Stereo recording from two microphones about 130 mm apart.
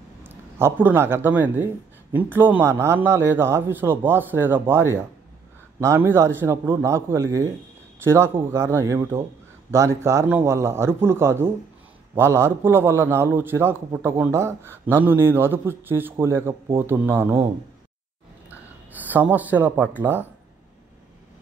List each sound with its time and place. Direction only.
0.6 s a man's voice: 15° right (ahead or behind)
19.0 s a man's voice: 15° right (ahead or behind)